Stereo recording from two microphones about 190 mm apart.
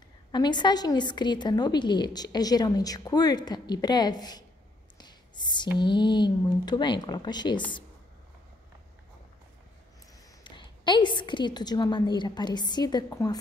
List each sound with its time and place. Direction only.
0.3 s a woman's voice: 25° left (ahead or behind)
4.9 s writing: 20° left (ahead or behind)
5.8 s a woman's voice: 25° left (ahead or behind)
10.4 s a woman's voice: 25° left (ahead or behind)